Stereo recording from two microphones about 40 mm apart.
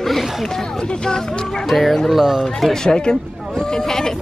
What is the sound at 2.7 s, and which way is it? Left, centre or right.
Speech, centre.